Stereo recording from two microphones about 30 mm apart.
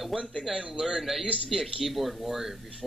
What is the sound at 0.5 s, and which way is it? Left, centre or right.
Speech, right.